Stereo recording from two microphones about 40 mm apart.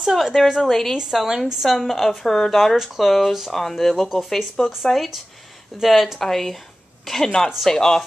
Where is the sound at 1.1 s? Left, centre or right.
Centre.